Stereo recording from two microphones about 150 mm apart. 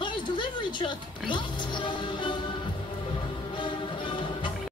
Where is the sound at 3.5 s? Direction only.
35° left (ahead or behind).